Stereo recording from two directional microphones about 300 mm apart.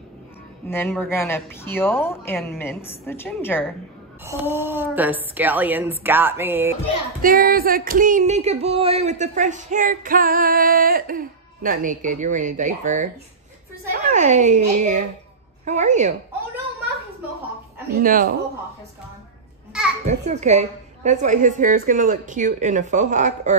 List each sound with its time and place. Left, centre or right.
0.7 s a woman's voice: centre
4.2 s a woman's voice: centre
7.2 s female singing: right
14.1 s female singing: right
17.9 s female singing: right
20.1 s female singing: right